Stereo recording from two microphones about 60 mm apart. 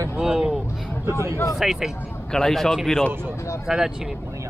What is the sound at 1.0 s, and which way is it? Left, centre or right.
Speech, right.